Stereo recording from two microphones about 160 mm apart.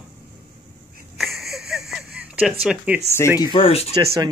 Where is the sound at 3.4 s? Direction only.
30° left (ahead or behind).